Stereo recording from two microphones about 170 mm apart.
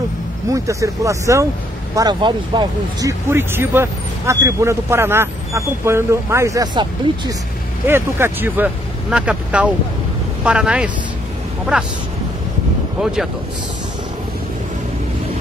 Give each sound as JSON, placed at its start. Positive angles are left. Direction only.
{"t": 0.5, "sound": "speech", "side_deg": -20}
{"t": 7.8, "sound": "speech", "side_deg": -10}
{"t": 13.0, "sound": "speech", "side_deg": -5}